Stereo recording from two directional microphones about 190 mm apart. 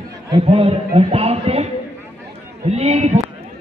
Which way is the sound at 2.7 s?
35° right (ahead or behind).